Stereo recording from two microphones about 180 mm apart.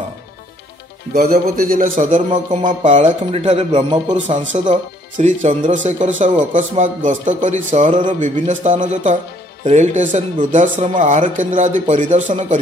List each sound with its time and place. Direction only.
1.1 s speech: 50° right (ahead or behind)
3.3 s speech: 30° right (ahead or behind)
4.1 s speech: 40° right (ahead or behind)